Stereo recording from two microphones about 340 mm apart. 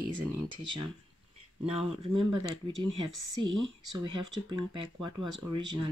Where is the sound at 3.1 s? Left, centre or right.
Right.